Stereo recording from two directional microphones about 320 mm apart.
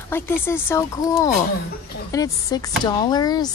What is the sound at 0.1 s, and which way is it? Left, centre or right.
Speech, centre.